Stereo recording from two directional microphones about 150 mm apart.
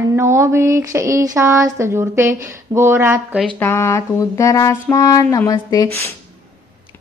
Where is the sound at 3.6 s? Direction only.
20° left (ahead or behind).